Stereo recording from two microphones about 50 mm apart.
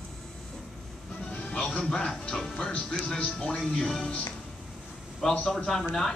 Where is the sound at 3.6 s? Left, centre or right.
Centre.